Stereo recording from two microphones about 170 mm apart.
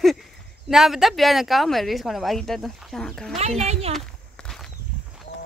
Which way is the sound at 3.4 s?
40° right (ahead or behind).